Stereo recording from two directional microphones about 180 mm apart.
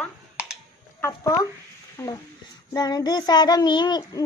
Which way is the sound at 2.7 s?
25° left (ahead or behind).